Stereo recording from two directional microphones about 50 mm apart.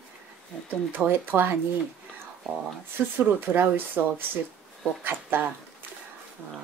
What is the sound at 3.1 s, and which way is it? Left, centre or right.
Speech, right.